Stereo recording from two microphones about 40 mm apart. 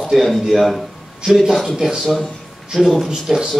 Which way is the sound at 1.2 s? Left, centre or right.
Centre.